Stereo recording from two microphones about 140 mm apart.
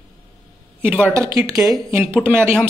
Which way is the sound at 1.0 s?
20° right (ahead or behind).